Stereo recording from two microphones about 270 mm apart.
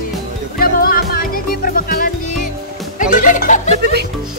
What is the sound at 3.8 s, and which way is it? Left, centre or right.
Speech, right.